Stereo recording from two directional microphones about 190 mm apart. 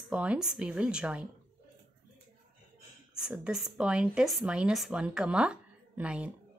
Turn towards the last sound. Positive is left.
turn(degrees=-5)  # may be behind; listen again after turning